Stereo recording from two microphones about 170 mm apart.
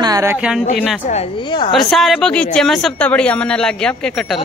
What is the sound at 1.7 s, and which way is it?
Speech, centre (ahead or behind).